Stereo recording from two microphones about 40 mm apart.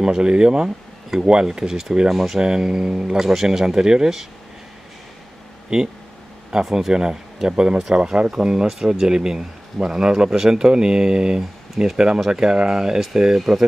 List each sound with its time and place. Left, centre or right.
0.0 s speech: right
5.7 s speech: right
6.5 s speech: centre
11.8 s speech: centre
12.3 s speech: right